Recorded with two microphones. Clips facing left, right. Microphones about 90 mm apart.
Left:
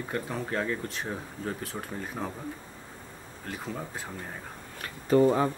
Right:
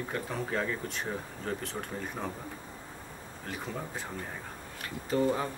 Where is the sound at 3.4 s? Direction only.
Centre (ahead or behind).